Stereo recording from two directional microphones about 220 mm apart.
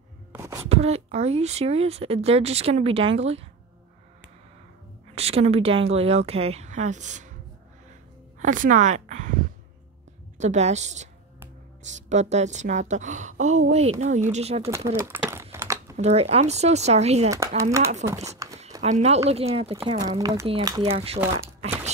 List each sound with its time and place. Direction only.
0.3 s wail: 15° right (ahead or behind)
0.7 s speech: 30° right (ahead or behind)
5.1 s speech: 30° right (ahead or behind)
8.4 s a woman's voice: 35° right (ahead or behind)
14.9 s speech: 10° right (ahead or behind)
15.5 s typing: 10° right (ahead or behind)
16.0 s speech: 30° right (ahead or behind)
17.6 s speech: 15° right (ahead or behind)
18.8 s speech: 30° right (ahead or behind); by 21.0 s 15° right (ahead or behind)
21.5 s a sound: 30° right (ahead or behind)